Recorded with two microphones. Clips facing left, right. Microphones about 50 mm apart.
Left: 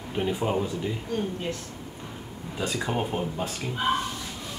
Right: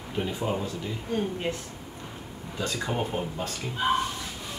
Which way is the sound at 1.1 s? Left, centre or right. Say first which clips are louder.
Right 2 dB; right.